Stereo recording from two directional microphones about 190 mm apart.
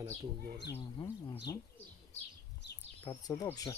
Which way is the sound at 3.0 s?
20° left (ahead or behind).